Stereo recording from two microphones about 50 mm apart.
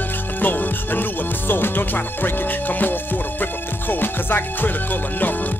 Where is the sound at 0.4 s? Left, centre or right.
Left.